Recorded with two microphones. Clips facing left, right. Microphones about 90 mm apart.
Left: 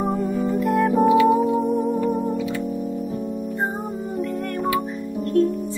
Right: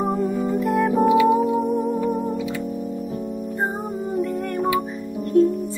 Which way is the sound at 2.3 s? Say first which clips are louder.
Left 1 dB; 20° right (ahead or behind).